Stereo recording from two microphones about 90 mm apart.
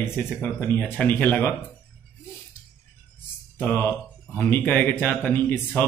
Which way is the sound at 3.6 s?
20° left (ahead or behind).